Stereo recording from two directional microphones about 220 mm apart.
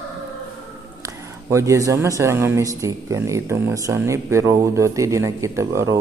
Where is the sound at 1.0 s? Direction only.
15° right (ahead or behind).